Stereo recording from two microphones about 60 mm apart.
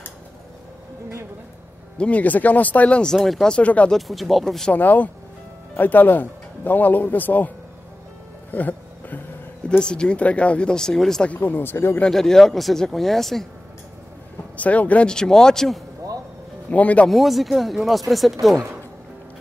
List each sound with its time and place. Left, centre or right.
2.0 s speech: left
3.2 s speech: centre
3.4 s speech: left
3.9 s speech: centre
4.7 s speech: left
8.5 s a sound: left
9.7 s speech: centre
11.2 s speech: left
12.1 s speech: centre
14.6 s speech: left
15.0 s speech: centre
16.7 s speech: left
17.1 s speech: centre